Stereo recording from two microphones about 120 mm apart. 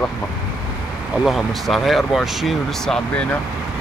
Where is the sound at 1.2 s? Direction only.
Centre (ahead or behind).